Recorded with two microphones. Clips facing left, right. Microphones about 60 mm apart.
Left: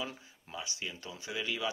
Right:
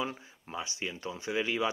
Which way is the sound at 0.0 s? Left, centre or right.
Right.